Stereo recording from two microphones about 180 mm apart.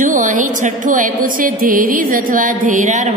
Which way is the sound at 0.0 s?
45° right (ahead or behind).